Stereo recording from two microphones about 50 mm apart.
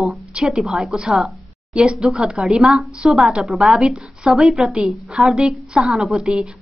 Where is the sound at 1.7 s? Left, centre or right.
Centre.